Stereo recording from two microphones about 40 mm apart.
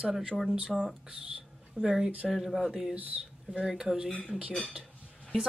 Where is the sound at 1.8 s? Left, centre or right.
Centre.